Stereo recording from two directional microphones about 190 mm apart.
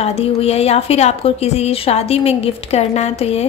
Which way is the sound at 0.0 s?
30° left (ahead or behind).